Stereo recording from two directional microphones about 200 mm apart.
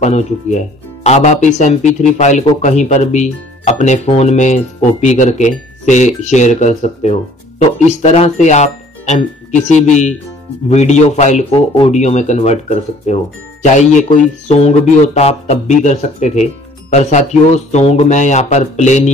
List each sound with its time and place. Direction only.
0.0 s speech: 35° left (ahead or behind)